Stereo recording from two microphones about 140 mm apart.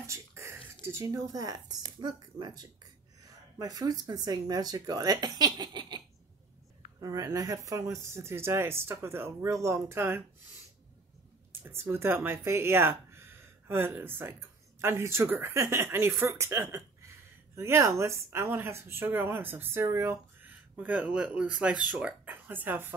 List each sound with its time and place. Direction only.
0.0 s a sound: 20° right (ahead or behind)
0.8 s speech: 20° right (ahead or behind)
11.5 s speech: 15° right (ahead or behind)